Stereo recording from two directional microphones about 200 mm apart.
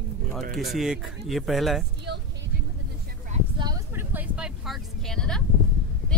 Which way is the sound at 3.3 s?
25° right (ahead or behind).